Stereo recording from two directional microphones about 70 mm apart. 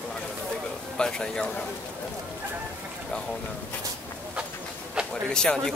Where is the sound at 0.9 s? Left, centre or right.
Centre.